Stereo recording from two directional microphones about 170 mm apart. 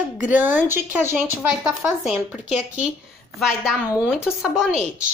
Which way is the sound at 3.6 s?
10° right (ahead or behind).